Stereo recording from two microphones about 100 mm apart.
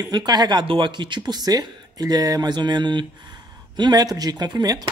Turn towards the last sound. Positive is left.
turn(degrees=-45)  # may be behind; listen again after turning